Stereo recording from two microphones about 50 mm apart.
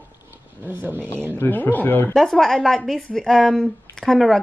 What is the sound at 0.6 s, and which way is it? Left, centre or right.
Speech, right.